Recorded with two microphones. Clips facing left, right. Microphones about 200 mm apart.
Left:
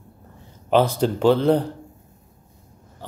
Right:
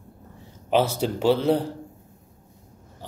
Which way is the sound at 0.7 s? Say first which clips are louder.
Left 3 dB; 10° right (ahead or behind).